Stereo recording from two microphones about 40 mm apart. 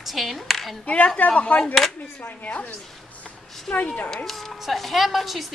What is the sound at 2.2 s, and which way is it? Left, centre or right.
Speech, left.